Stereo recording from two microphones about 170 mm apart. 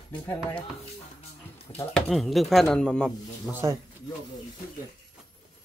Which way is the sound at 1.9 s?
Centre (ahead or behind).